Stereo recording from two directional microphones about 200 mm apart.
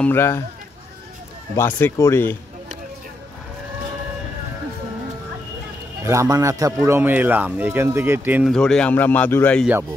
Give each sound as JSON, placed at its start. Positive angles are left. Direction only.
{"t": 0.0, "sound": "speech", "side_deg": 10}
{"t": 1.6, "sound": "speech", "side_deg": 10}
{"t": 6.0, "sound": "speech", "side_deg": -15}
{"t": 8.5, "sound": "speech", "side_deg": 5}